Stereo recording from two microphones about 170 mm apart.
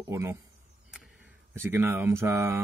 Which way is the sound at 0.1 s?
15° right (ahead or behind).